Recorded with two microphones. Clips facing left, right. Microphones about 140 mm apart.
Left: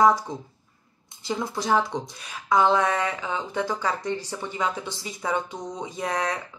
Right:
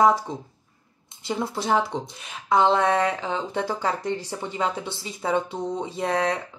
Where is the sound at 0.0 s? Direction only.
20° right (ahead or behind).